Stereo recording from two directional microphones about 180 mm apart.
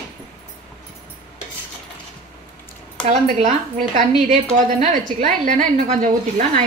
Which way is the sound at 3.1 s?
45° right (ahead or behind).